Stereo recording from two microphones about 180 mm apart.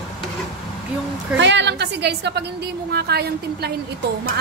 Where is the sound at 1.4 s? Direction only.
75° right (ahead or behind).